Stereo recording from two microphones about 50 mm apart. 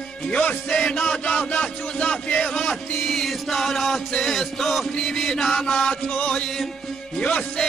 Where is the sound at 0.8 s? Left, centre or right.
Centre.